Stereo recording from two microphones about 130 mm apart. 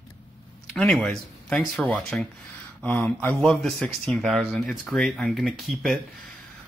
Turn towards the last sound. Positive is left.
turn(degrees=0)  # may be behind; listen again after turning